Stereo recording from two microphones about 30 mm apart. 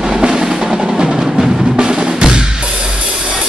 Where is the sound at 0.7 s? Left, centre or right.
Centre.